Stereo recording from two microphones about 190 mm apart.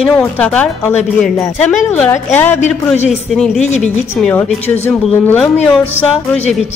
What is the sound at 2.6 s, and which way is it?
Speech, 35° left (ahead or behind).